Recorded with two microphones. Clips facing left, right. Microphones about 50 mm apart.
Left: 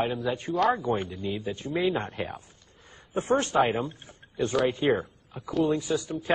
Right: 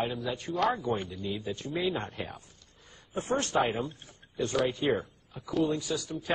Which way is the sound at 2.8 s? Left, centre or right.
Left.